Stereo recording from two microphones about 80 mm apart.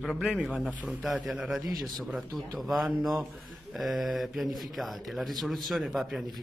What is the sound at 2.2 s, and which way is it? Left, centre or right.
A man's voice, centre.